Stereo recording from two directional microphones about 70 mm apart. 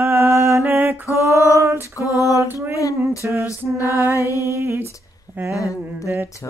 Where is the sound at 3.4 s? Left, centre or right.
Left.